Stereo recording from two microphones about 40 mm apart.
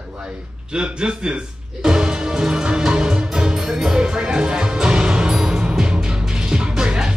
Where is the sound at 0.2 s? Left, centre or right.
Right.